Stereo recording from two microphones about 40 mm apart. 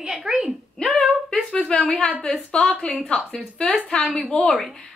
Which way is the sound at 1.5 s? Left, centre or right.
Left.